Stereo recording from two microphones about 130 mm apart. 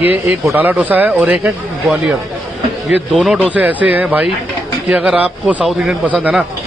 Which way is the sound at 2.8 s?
5° right (ahead or behind).